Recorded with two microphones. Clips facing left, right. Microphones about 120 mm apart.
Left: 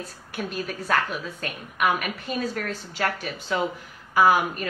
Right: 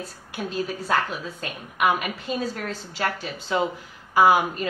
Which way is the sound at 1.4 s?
20° right (ahead or behind).